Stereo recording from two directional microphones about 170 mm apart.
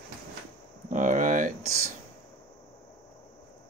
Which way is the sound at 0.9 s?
50° right (ahead or behind).